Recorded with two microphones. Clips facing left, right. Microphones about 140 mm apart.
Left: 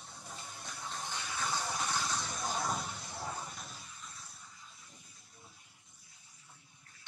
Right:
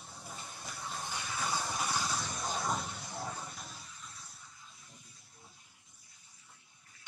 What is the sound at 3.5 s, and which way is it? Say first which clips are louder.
Vehicle: even; centre (ahead or behind).